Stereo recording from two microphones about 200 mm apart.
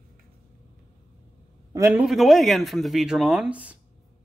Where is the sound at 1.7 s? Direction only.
15° right (ahead or behind).